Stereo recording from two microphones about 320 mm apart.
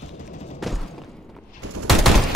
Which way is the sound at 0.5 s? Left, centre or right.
Centre.